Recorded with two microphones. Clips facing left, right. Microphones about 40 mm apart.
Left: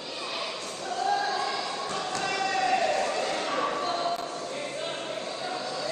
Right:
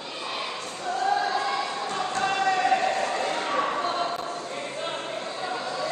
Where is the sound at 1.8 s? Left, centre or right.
Right.